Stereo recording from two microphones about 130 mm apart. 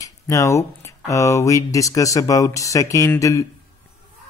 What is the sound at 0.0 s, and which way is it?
Speech, 25° left (ahead or behind).